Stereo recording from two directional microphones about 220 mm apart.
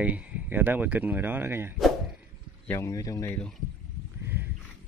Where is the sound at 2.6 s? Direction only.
10° left (ahead or behind).